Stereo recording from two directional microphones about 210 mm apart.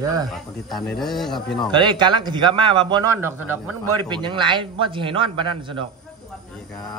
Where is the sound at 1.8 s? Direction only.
20° right (ahead or behind).